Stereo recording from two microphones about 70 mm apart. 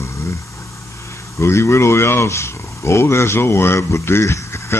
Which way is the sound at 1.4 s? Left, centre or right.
Left.